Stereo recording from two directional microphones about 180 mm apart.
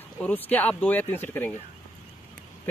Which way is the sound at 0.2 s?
10° left (ahead or behind).